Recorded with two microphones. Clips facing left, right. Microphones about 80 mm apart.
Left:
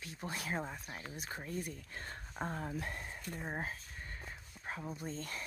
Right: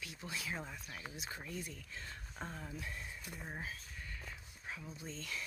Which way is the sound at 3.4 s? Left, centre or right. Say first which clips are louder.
Left 5 dB; left.